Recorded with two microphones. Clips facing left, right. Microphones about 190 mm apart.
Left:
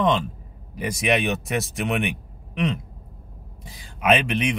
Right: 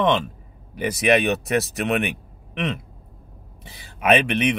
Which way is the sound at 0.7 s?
Centre (ahead or behind).